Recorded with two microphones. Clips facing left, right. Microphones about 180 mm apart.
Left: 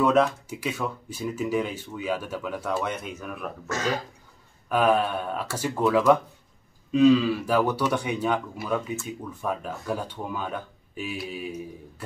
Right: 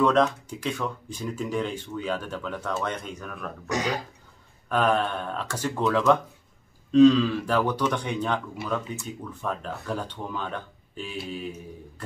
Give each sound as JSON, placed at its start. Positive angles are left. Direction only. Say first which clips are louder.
{"t": 0.0, "sound": "speech", "louder": "even", "side_deg": 10}
{"t": 3.6, "sound": "speech", "louder": "even", "side_deg": -15}
{"t": 4.6, "sound": "speech", "louder": "left 2 dB", "side_deg": 10}